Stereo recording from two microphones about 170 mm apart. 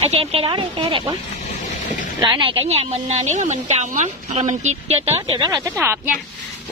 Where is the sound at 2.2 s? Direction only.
30° right (ahead or behind).